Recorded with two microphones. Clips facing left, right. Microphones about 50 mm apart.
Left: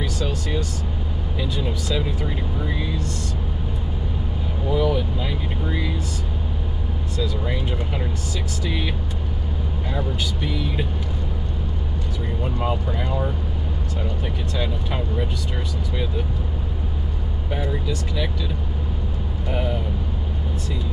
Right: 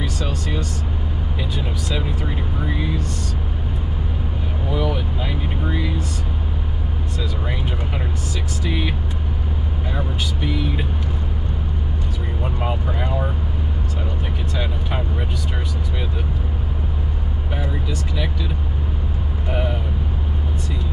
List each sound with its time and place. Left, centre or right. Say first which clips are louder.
1.4 s speech: left 2 dB; centre
4.7 s speech: left 2 dB; centre
7.2 s speech: left 3 dB; centre
9.9 s speech: even; centre
12.4 s speech: even; centre
14.6 s speech: even; centre
17.6 s speech: left 1 dB; centre